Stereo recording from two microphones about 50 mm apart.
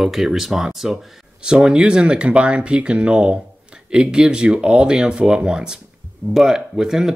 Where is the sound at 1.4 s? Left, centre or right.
Centre.